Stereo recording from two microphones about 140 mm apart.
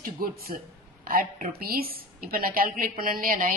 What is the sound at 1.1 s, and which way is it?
Speech, 80° right.